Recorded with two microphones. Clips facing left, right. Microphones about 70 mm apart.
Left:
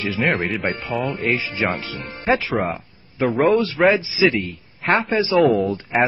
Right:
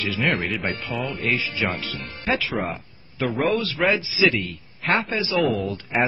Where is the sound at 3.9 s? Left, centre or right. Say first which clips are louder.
Left 3 dB; left.